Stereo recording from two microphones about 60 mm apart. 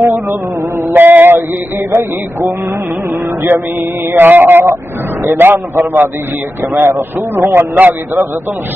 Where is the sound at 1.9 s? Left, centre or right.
Right.